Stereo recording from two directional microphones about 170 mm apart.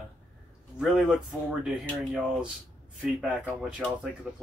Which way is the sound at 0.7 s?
5° right (ahead or behind).